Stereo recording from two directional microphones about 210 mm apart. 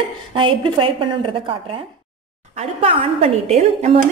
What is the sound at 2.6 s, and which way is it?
A woman's voice, 30° right (ahead or behind).